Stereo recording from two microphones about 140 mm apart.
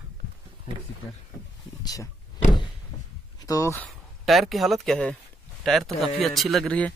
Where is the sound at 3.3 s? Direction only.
25° left (ahead or behind).